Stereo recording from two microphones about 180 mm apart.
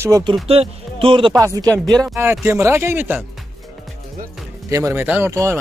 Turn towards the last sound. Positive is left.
turn(degrees=-15)  # may be behind; listen again after turning